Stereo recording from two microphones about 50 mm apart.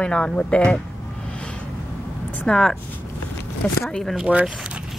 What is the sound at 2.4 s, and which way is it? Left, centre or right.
Speech, centre.